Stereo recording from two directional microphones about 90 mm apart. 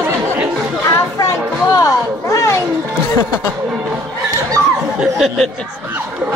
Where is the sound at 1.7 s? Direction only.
35° left (ahead or behind).